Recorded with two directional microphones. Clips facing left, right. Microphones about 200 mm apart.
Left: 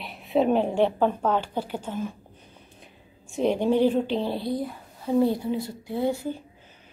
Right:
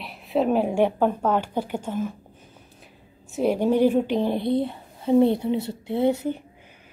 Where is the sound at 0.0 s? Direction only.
Centre (ahead or behind).